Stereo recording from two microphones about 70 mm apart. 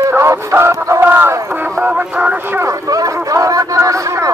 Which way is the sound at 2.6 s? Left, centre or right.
Right.